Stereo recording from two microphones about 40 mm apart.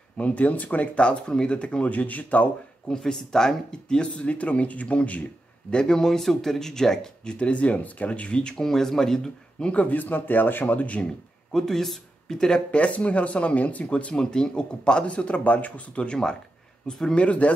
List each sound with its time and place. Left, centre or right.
0.2 s speech: left
1.0 s speech: left
2.9 s speech: centre; by 5.2 s left
5.7 s speech: centre
7.3 s speech: left
8.6 s speech: centre
9.7 s a man's voice: left
10.7 s speech: left
11.5 s speech: centre
12.7 s speech: left
14.1 s speech: centre; by 15.8 s left
15.9 s speech: left